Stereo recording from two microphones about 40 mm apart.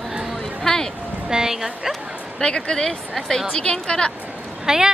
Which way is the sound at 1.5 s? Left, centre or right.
Centre.